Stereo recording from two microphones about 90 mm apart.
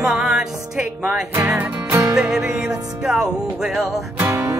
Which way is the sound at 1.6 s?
20° right (ahead or behind).